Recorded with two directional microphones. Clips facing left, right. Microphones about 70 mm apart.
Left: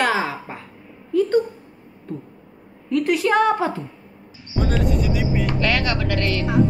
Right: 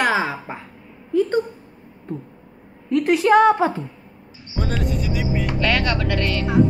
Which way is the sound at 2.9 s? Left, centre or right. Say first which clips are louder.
Right 3 dB; right.